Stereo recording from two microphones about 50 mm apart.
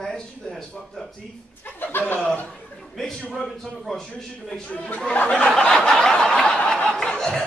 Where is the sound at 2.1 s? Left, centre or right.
Left.